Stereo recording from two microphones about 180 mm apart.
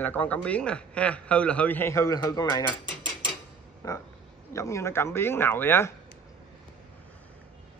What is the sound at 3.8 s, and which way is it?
A man's voice, 20° left (ahead or behind).